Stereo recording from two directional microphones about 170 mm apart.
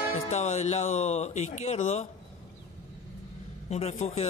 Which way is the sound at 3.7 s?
45° left (ahead or behind).